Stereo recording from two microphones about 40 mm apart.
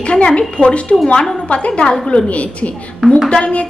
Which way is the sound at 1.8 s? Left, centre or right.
Centre.